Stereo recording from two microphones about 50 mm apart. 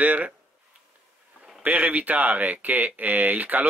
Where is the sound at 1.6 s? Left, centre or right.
Right.